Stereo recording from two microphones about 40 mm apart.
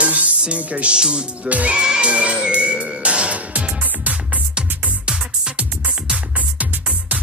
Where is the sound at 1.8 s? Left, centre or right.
Right.